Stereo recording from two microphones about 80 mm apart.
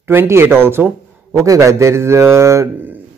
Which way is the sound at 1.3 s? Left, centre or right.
Right.